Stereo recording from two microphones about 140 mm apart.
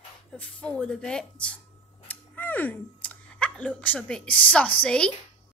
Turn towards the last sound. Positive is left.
turn(degrees=5)  # may be behind; listen again after turning